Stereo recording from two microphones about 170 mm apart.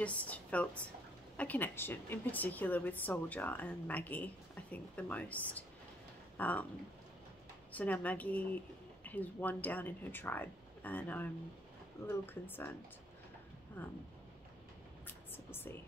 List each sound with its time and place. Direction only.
0.0 s a woman's voice: 10° left (ahead or behind)
7.7 s a woman's voice: 10° left (ahead or behind)
13.8 s a woman's voice: 10° left (ahead or behind)
15.0 s a sound: 10° left (ahead or behind)